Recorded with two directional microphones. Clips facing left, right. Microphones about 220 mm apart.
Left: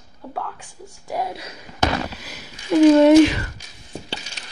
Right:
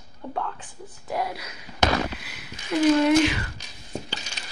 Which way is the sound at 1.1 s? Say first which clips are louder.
Left 2 dB; 25° left (ahead or behind).